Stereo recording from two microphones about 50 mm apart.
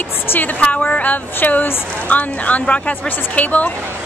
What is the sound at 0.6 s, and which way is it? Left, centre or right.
A woman's voice, left.